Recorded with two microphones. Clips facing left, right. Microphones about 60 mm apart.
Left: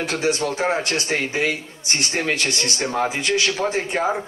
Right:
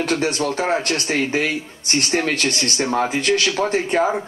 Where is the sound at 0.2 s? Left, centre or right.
Right.